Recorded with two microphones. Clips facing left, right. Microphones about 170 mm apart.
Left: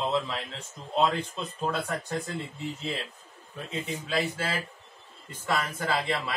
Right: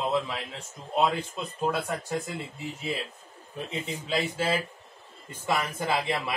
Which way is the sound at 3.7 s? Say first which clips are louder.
Even; 15° right (ahead or behind).